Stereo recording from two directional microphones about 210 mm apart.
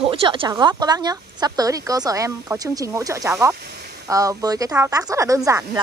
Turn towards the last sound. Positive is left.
turn(degrees=-15)  # may be behind; listen again after turning